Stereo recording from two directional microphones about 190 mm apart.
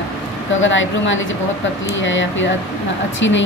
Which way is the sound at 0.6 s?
80° left.